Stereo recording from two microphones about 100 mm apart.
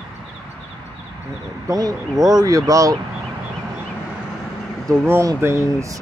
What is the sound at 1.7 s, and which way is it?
Speech, 35° right (ahead or behind).